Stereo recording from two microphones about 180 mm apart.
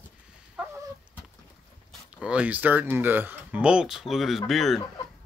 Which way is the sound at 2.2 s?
5° right (ahead or behind).